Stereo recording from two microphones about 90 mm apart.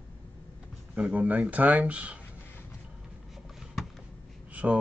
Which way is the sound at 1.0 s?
15° right (ahead or behind).